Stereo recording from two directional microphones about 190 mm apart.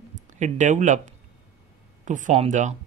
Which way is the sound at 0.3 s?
40° right (ahead or behind).